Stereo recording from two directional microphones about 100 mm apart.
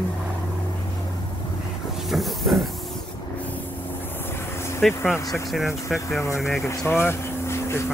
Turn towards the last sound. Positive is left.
turn(degrees=25)  # may be behind; listen again after turning